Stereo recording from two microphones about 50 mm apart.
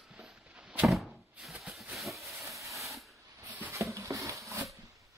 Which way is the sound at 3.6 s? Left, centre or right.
Right.